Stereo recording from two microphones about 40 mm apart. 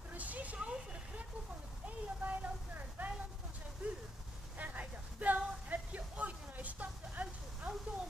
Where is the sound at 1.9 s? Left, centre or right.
Right.